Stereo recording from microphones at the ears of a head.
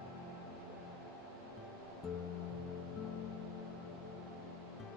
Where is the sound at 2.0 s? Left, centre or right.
Left.